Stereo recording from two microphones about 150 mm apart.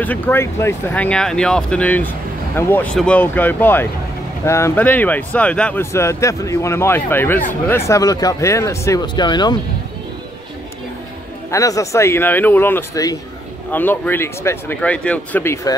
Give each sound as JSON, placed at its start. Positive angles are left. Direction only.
{"t": 0.0, "sound": "speech", "side_deg": 10}
{"t": 9.0, "sound": "speech", "side_deg": 30}
{"t": 11.5, "sound": "speech", "side_deg": 20}
{"t": 13.7, "sound": "speech", "side_deg": 10}